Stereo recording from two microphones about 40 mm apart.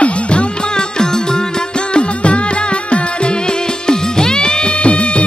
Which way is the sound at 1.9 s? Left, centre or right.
Left.